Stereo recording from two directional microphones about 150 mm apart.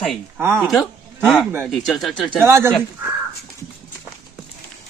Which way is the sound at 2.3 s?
15° right (ahead or behind).